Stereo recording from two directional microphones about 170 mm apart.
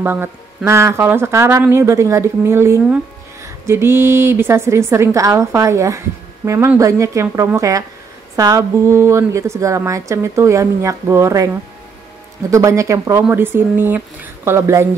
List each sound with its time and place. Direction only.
0.0 s a woman's voice: 10° right (ahead or behind)